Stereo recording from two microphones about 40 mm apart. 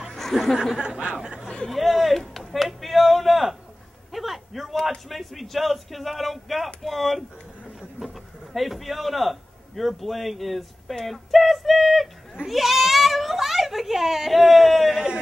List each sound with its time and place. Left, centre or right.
0.3 s speech: centre
0.7 s speech: right
1.7 s a man's voice: centre
4.1 s a sound: centre
4.8 s a man's voice: centre
8.5 s a man's voice: centre